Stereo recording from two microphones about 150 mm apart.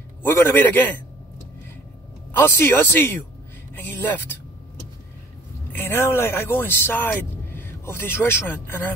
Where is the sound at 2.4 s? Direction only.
15° left (ahead or behind).